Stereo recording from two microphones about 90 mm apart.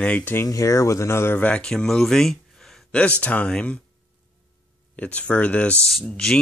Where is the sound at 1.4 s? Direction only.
10° left (ahead or behind).